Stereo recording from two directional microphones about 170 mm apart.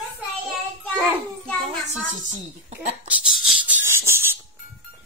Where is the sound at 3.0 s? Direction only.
10° right (ahead or behind).